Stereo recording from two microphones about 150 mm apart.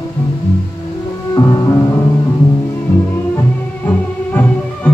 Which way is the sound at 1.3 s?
25° left (ahead or behind).